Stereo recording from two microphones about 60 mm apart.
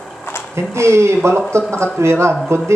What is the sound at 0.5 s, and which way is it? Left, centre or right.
A man's voice, right.